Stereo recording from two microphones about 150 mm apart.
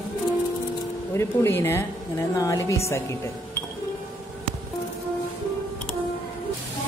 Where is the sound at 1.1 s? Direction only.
15° left (ahead or behind).